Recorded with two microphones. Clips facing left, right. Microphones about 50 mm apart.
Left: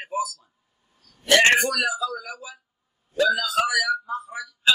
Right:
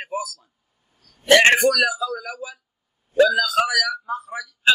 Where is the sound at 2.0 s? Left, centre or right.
Right.